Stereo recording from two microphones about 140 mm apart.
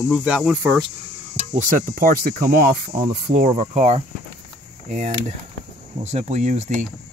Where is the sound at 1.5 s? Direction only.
70° right (ahead or behind); by 3.4 s 90° right.